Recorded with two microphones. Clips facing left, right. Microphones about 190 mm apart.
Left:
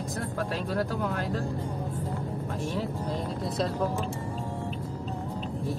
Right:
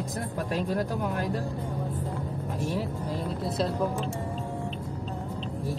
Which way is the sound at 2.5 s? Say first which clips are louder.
Right 2 dB; 10° right (ahead or behind).